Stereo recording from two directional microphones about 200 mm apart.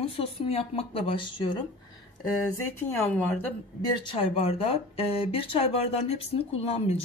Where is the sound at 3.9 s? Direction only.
25° left (ahead or behind).